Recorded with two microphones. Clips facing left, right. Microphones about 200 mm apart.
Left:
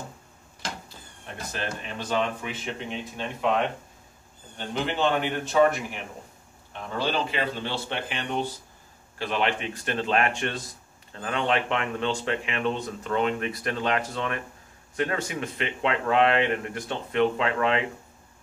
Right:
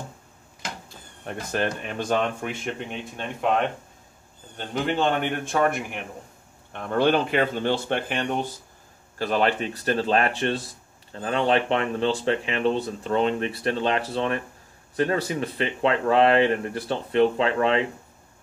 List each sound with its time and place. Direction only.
1.2 s speech: 55° right (ahead or behind)
4.8 s speech: 50° right (ahead or behind); by 17.8 s 30° right (ahead or behind)